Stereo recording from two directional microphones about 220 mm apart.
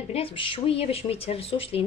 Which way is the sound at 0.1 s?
25° left (ahead or behind).